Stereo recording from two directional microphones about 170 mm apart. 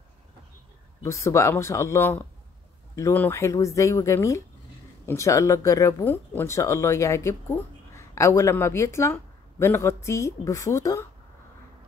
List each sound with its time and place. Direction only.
1.0 s speech: 15° left (ahead or behind)